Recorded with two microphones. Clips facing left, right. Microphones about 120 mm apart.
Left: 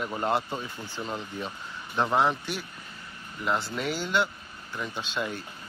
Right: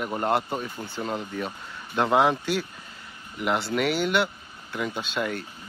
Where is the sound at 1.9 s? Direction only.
75° right (ahead or behind).